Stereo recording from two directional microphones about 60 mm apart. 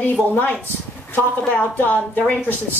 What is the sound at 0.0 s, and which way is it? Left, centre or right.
Speech, left.